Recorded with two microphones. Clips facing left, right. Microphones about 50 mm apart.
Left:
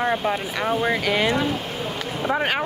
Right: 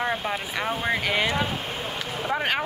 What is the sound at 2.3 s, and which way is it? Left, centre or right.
Speech, centre.